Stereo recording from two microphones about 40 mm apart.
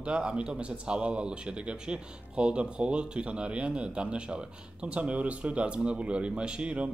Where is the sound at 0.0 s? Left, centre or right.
Right.